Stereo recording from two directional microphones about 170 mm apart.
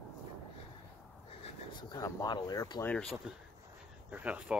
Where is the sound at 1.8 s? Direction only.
25° left (ahead or behind).